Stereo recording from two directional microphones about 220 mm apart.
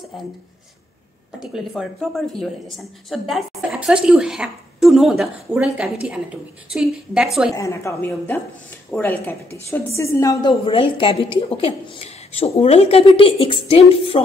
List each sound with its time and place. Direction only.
1.4 s a woman's voice: centre (ahead or behind)
7.5 s a woman's voice: 15° left (ahead or behind)